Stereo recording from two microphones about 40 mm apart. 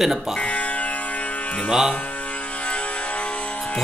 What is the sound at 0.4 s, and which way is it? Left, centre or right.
Music, left.